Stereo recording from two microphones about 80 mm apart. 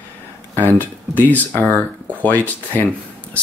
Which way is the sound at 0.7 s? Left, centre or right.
Left.